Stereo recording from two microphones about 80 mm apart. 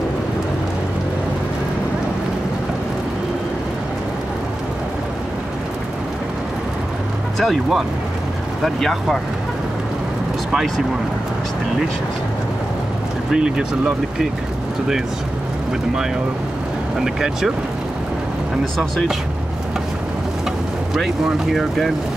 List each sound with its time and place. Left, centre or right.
7.3 s speech: centre
13.3 s speech: centre
17.0 s speech: centre
18.8 s speech: centre
20.9 s speech: centre